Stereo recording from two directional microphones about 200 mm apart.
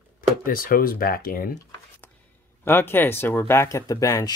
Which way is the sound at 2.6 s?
10° left (ahead or behind).